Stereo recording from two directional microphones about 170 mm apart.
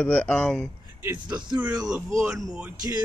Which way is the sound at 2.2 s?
Centre (ahead or behind).